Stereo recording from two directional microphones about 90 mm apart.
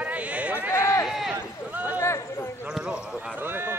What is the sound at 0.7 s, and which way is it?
Speech, 30° left (ahead or behind).